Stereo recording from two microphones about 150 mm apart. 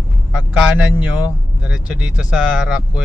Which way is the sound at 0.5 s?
5° right (ahead or behind).